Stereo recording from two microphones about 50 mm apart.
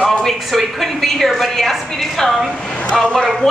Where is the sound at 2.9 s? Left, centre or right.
Centre.